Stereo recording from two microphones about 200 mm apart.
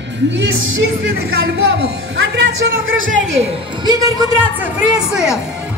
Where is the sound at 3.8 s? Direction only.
20° right (ahead or behind).